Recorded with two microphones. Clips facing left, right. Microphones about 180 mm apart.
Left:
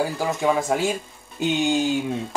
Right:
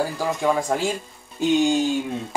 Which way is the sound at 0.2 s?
5° left (ahead or behind).